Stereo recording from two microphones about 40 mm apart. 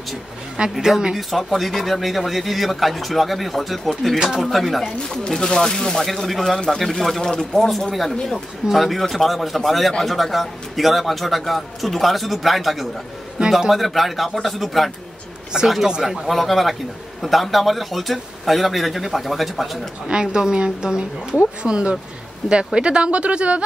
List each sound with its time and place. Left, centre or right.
0.8 s a woman's voice: centre
1.1 s speech: centre
4.2 s a woman's voice: centre
5.3 s speech: centre
13.4 s speech: right
13.7 s speech: centre
20.1 s a woman's voice: centre